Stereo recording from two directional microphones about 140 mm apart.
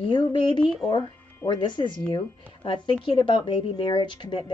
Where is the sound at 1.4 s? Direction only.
35° left (ahead or behind).